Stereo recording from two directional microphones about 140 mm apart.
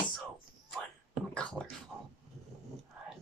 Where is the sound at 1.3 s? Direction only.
5° left (ahead or behind).